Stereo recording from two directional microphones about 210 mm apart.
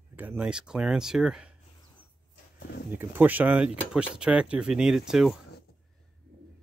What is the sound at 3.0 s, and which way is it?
Speech, 10° right (ahead or behind).